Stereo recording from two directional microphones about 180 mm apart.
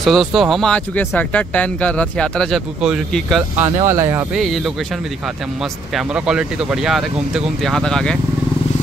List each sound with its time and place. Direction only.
0.0 s speech: centre (ahead or behind)
3.5 s speech: 15° right (ahead or behind)
5.9 s speech: 5° right (ahead or behind)